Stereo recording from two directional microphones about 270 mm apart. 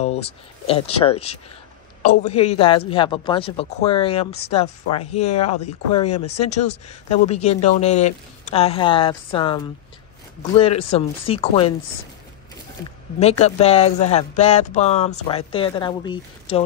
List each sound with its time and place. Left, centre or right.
0.7 s speech: left
13.2 s speech: left